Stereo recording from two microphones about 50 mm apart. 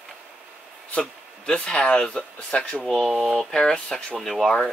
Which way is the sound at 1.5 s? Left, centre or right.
Centre.